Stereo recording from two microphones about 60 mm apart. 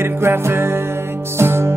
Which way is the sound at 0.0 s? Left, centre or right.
Right.